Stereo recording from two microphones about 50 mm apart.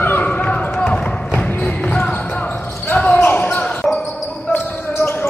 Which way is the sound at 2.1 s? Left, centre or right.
Left.